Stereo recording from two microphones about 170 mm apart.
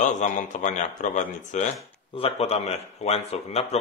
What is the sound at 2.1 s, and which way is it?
Speech, 35° left (ahead or behind).